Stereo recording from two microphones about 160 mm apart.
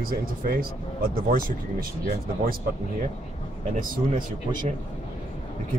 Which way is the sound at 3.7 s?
55° right (ahead or behind).